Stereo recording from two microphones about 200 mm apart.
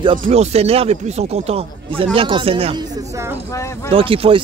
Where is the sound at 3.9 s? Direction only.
30° right (ahead or behind).